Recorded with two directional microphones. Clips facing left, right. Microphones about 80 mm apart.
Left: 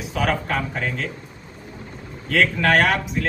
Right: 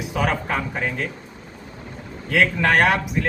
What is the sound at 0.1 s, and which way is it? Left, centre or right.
Speech, centre.